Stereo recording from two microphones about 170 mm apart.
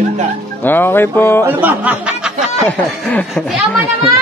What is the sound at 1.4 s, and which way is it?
Speech, 10° right (ahead or behind).